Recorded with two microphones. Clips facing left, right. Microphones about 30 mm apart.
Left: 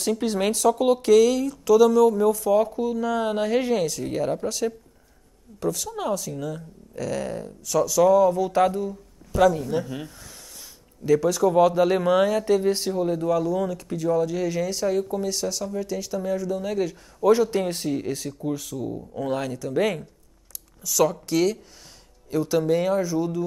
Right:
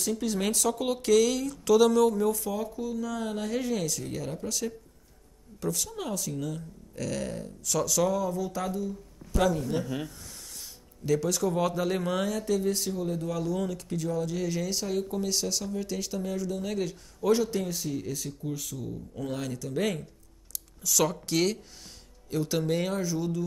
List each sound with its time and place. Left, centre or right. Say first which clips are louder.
0.0 s speech: left 5 dB; left
0.6 s speech: left 8 dB; centre
2.5 s speech: left 11 dB; left
3.7 s speech: left 7 dB; centre
5.6 s speech: left 6 dB; centre
8.2 s speech: left 11 dB; left
8.5 s speech: left 10 dB; left
9.3 s a man's voice: left 7 dB; centre
17.6 s speech: left 7 dB; left
18.4 s speech: left 7 dB; centre
23.0 s speech: left 5 dB; centre